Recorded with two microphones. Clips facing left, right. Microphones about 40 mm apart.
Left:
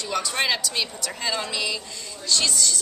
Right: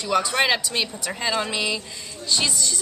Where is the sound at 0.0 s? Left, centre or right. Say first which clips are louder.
Right 4 dB; right.